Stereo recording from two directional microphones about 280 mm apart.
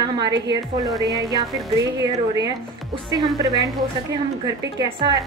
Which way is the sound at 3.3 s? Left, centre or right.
Centre.